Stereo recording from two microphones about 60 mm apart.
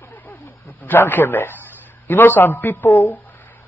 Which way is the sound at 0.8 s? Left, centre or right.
Left.